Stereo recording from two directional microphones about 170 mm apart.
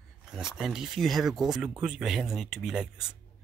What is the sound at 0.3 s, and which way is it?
Speech, 5° right (ahead or behind).